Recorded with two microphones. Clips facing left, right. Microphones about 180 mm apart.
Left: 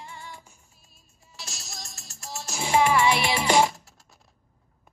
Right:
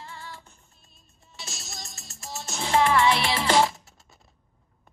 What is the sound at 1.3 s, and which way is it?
Music, centre (ahead or behind).